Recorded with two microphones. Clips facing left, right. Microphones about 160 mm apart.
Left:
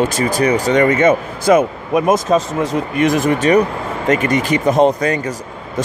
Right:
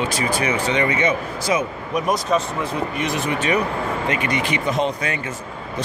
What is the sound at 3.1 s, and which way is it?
Speech, 45° left (ahead or behind).